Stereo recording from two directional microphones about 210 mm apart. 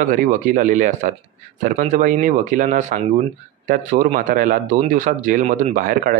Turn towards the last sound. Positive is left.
turn(degrees=-40)  # may be behind; listen again after turning